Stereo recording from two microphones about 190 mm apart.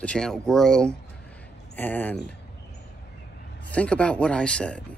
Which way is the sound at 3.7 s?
5° left (ahead or behind).